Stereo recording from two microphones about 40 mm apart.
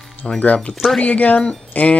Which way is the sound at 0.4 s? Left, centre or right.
Left.